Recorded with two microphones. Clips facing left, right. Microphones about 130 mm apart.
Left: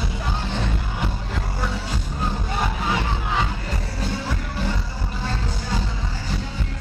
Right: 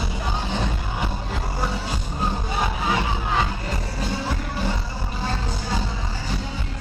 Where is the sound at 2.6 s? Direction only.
15° right (ahead or behind).